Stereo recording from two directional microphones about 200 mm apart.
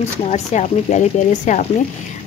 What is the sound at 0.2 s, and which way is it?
Speech, 35° left (ahead or behind).